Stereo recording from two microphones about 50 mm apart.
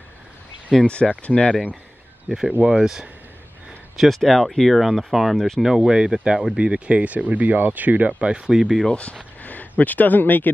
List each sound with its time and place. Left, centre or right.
0.8 s speech: left
2.2 s speech: centre
3.9 s speech: centre
5.8 s speech: centre
8.9 s speech: left